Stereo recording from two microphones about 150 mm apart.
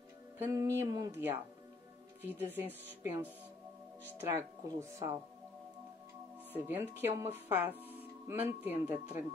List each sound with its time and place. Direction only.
0.4 s speech: 20° right (ahead or behind)
2.2 s speech: 10° right (ahead or behind)
6.5 s speech: 15° right (ahead or behind)